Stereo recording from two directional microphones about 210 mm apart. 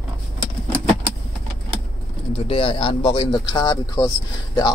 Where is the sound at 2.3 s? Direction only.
25° left (ahead or behind).